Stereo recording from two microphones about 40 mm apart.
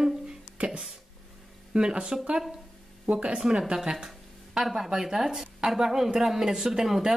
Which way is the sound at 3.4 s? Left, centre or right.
Centre.